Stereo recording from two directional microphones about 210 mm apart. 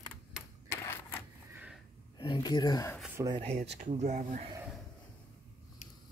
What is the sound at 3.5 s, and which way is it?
Speech, 55° right (ahead or behind).